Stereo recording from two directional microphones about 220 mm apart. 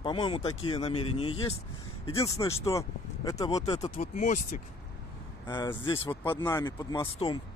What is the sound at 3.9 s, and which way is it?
Speech, 35° left (ahead or behind).